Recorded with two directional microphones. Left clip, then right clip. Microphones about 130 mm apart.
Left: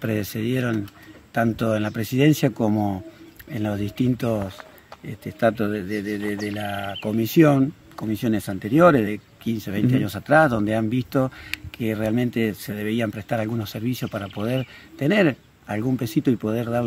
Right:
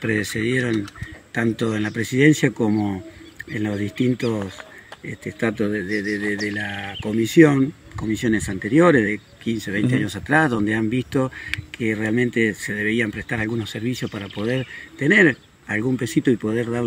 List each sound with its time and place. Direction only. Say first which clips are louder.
0.0 s speech: right 4 dB; 45° left (ahead or behind)